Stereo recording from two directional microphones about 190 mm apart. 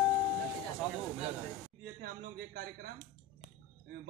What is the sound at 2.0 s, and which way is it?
Speech, 55° right (ahead or behind).